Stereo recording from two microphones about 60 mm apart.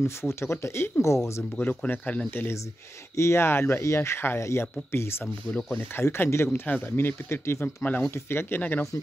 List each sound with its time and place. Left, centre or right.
0.0 s speech: left
1.6 s speech: left
3.2 s speech: left